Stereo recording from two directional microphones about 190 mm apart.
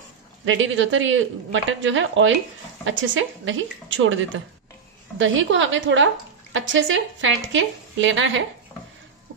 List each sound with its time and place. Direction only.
0.5 s speech: 90° right